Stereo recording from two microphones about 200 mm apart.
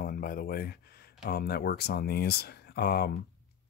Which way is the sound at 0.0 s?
50° left (ahead or behind).